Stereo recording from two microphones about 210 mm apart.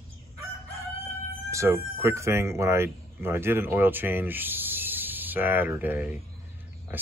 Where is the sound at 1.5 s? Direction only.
15° right (ahead or behind).